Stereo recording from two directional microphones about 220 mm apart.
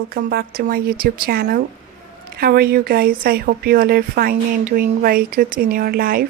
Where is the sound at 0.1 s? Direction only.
45° right (ahead or behind).